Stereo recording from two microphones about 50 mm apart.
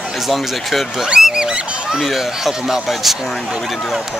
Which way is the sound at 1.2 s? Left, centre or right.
Centre.